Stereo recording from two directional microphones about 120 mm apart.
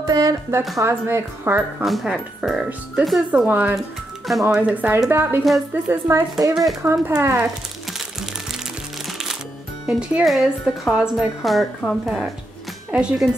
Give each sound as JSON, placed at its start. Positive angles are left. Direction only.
{"t": 0.1, "sound": "speech", "side_deg": -30}
{"t": 1.8, "sound": "a woman's voice", "side_deg": -5}
{"t": 4.3, "sound": "a woman's voice", "side_deg": 0}
{"t": 4.6, "sound": "a woman's voice", "side_deg": -15}
{"t": 9.8, "sound": "a woman's voice", "side_deg": -5}